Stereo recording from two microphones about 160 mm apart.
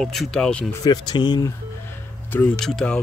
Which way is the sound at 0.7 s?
25° left (ahead or behind).